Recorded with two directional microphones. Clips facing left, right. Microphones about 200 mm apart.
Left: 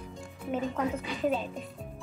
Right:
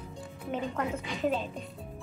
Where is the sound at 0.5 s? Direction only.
5° left (ahead or behind).